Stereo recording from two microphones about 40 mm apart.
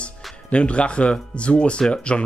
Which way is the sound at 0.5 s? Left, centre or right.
Left.